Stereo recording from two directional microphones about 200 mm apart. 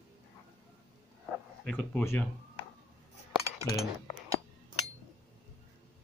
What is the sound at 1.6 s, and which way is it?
Speech, 5° left (ahead or behind).